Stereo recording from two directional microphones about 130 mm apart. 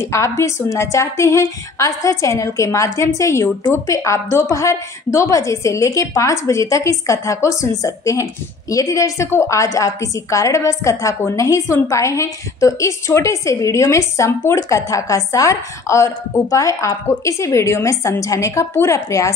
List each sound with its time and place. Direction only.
0.0 s a woman's voice: 20° left (ahead or behind)